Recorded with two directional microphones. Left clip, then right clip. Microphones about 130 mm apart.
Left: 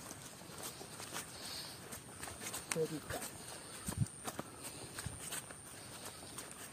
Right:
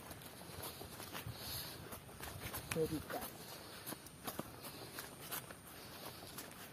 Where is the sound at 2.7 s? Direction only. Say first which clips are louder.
Left 1 dB; 45° left (ahead or behind).